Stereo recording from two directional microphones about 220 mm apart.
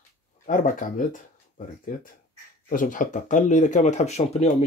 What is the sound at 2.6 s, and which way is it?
Speech, 40° left (ahead or behind).